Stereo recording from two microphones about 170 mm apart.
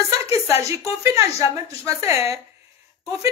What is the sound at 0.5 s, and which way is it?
A woman's voice, 15° right (ahead or behind).